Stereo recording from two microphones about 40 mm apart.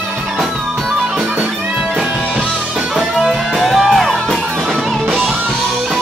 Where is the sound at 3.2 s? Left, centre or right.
Centre.